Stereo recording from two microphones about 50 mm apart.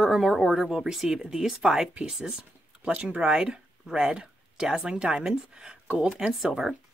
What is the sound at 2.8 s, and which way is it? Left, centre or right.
A woman's voice, right.